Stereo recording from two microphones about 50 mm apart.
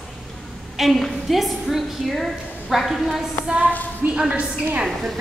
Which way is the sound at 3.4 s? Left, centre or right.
Right.